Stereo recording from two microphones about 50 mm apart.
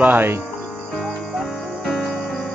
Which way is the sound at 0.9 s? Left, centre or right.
Centre.